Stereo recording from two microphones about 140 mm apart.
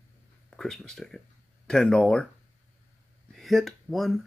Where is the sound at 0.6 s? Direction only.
5° left (ahead or behind).